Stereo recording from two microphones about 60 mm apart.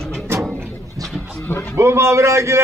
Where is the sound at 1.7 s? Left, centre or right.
Right.